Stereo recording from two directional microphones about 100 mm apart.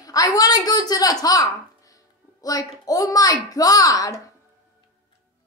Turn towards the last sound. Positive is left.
turn(degrees=35)  # may be behind; listen again after turning